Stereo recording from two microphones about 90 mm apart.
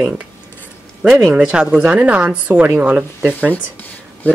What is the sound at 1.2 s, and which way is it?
Speech, 10° right (ahead or behind).